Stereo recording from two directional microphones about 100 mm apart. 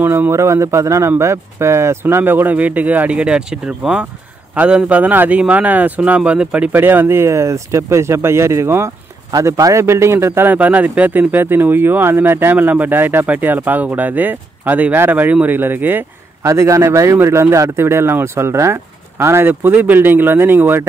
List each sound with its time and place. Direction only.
0.0 s a man's voice: 25° right (ahead or behind)